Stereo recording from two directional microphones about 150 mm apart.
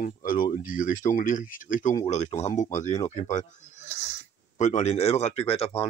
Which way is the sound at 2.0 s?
50° left (ahead or behind).